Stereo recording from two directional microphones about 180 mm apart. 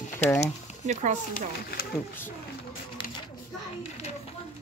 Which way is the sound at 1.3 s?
55° left (ahead or behind).